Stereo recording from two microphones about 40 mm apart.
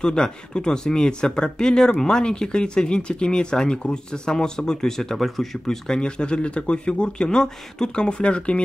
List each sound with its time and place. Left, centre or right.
0.0 s speech: left
5.9 s speech: left